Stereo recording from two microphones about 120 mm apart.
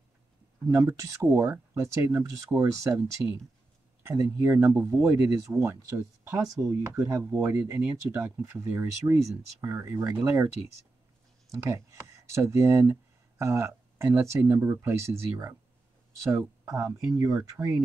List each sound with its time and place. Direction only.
0.7 s speech: 25° right (ahead or behind)
11.5 s speech: 25° right (ahead or behind)
16.6 s speech: 30° right (ahead or behind)